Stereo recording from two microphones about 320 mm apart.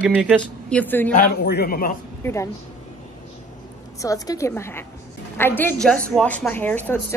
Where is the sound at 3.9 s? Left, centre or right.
Centre.